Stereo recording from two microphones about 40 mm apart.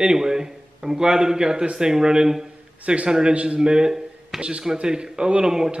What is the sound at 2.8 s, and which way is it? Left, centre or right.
A man's voice, right.